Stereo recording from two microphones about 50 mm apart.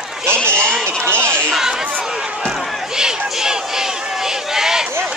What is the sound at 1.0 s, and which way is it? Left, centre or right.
Chatter, right.